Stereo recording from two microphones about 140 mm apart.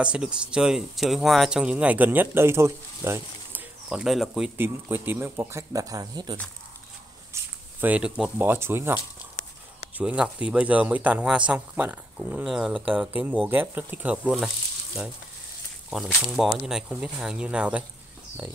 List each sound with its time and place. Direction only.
0.0 s speech: 5° right (ahead or behind)
3.9 s speech: 5° right (ahead or behind)
4.6 s speech: 15° right (ahead or behind)
7.8 s speech: 10° right (ahead or behind)
9.9 s speech: 5° right (ahead or behind)
16.3 s speech: 5° right (ahead or behind)